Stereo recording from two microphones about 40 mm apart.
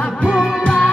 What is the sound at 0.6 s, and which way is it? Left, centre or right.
Music, left.